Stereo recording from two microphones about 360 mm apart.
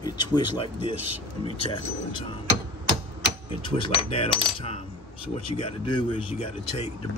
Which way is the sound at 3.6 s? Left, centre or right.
Centre.